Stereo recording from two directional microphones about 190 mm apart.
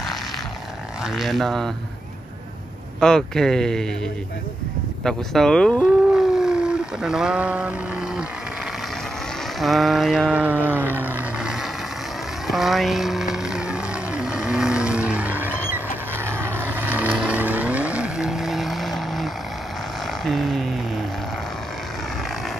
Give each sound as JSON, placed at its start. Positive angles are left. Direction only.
{"t": 1.0, "sound": "vehicle", "side_deg": 0}
{"t": 3.0, "sound": "vehicle", "side_deg": 5}
{"t": 5.0, "sound": "speech", "side_deg": 5}
{"t": 9.6, "sound": "vehicle", "side_deg": 0}
{"t": 20.2, "sound": "a sound", "side_deg": 0}